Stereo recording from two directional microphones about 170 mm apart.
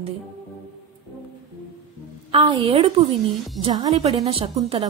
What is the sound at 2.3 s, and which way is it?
A woman's voice, 30° right (ahead or behind).